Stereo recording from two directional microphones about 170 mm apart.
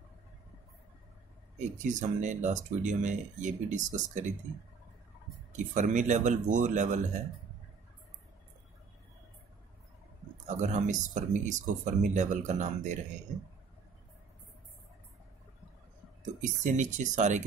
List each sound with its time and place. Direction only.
1.6 s speech: 45° right (ahead or behind)
5.8 s speech: 45° right (ahead or behind)
10.3 s speech: 45° right (ahead or behind)
16.3 s speech: 50° right (ahead or behind)